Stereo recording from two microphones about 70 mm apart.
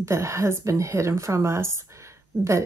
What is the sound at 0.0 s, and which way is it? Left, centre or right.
A woman's voice, right.